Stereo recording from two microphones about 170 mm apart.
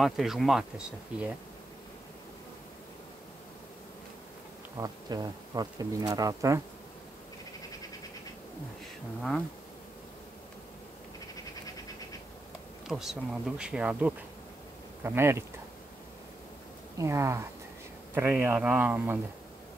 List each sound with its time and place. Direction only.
0.0 s speech: centre (ahead or behind)
4.7 s speech: 20° right (ahead or behind)
12.8 s speech: 5° right (ahead or behind)
17.0 s speech: 15° right (ahead or behind)